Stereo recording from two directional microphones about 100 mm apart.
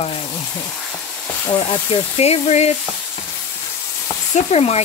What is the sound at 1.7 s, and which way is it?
Speech, 75° left (ahead or behind).